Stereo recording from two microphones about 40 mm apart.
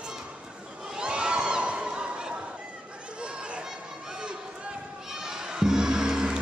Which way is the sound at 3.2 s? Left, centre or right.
Right.